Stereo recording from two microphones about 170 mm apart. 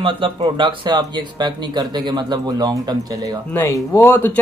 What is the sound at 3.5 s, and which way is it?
Speech, 15° left (ahead or behind).